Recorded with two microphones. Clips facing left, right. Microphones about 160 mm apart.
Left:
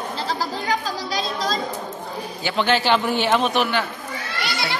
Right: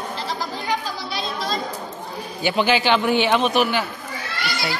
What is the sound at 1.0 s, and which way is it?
Chatter, 90° left.